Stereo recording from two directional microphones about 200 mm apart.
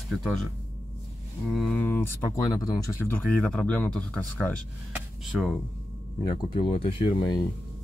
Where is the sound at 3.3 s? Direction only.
5° left (ahead or behind).